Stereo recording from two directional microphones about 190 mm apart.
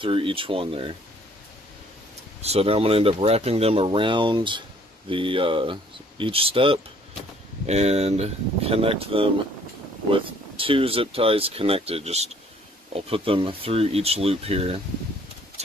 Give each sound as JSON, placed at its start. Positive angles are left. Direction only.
{"t": 0.0, "sound": "speech", "side_deg": -30}
{"t": 2.4, "sound": "speech", "side_deg": -30}